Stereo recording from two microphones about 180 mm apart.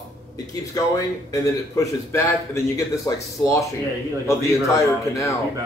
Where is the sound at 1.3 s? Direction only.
20° left (ahead or behind).